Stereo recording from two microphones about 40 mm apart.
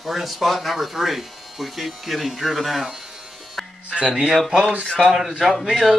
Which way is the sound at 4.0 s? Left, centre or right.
Right.